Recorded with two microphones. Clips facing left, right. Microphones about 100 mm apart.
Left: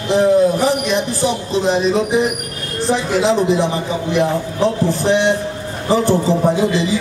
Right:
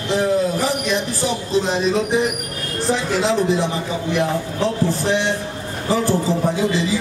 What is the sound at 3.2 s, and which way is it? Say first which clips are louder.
A man's voice: left 5 dB; 20° left (ahead or behind).